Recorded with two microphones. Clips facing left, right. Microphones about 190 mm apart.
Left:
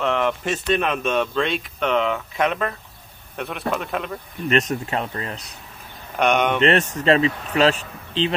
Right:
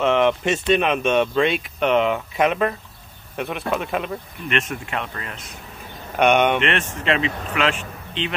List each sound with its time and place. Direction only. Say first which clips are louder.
0.0 s a sound: right 4 dB; centre (ahead or behind)
0.4 s speech: right 3 dB; 5° right (ahead or behind)
4.5 s speech: left 4 dB; 40° left (ahead or behind)
6.1 s speech: right 2 dB; centre (ahead or behind)
6.6 s speech: left 5 dB; 35° left (ahead or behind)